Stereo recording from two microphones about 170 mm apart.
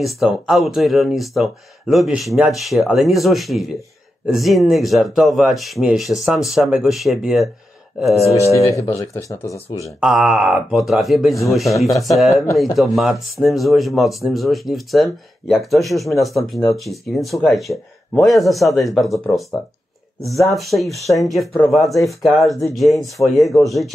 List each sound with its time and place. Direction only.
0.0 s speech: centre (ahead or behind)
8.3 s speech: 15° left (ahead or behind)
9.9 s speech: 5° right (ahead or behind)
20.5 s speech: centre (ahead or behind)
20.9 s speech: 20° left (ahead or behind)
21.3 s speech: centre (ahead or behind)